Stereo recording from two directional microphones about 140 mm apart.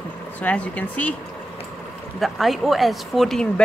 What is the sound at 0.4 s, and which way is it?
Speech, 10° left (ahead or behind).